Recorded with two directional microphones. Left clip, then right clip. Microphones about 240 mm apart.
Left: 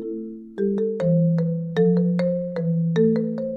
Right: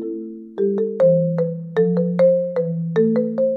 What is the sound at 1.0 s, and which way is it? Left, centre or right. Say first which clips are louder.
Music: right 8 dB; centre.